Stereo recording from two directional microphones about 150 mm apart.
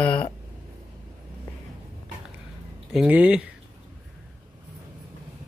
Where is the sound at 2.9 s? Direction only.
10° right (ahead or behind).